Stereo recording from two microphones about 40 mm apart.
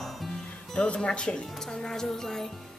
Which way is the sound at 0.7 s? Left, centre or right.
Left.